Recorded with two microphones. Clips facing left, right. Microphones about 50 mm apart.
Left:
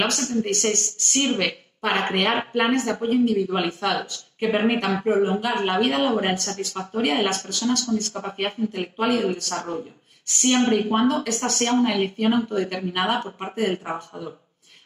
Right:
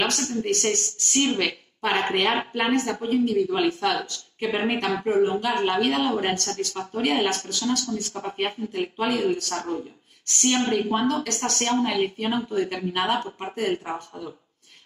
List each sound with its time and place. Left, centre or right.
0.0 s a woman's voice: centre
10.6 s speech: centre
11.2 s a woman's voice: centre